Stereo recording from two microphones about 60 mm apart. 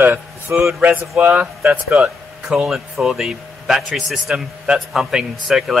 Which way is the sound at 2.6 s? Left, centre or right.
Centre.